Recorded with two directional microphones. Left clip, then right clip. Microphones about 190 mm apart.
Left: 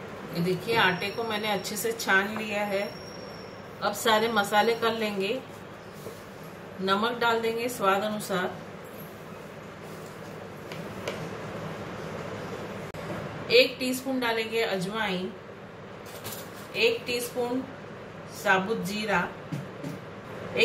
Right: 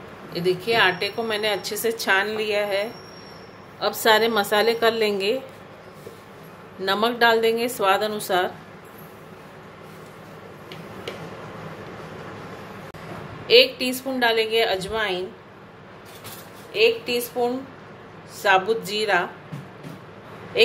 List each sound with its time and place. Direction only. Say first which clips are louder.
0.7 s a woman's voice: right 4 dB; 50° right (ahead or behind)
3.8 s a woman's voice: right 6 dB; 55° right (ahead or behind)
6.9 s a woman's voice: right 6 dB; 55° right (ahead or behind)
13.5 s a woman's voice: right 6 dB; 55° right (ahead or behind)
16.7 s a woman's voice: right 6 dB; 55° right (ahead or behind)
18.4 s a woman's voice: right 6 dB; 55° right (ahead or behind)